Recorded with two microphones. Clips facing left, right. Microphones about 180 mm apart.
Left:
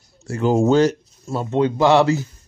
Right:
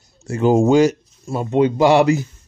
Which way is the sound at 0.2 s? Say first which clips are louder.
Right 3 dB; 20° right (ahead or behind).